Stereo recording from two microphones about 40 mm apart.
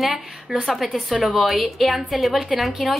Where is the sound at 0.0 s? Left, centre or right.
Centre.